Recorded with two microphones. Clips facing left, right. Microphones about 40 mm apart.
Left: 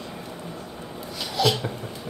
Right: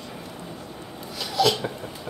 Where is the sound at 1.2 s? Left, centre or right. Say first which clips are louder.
Right 1 dB; centre.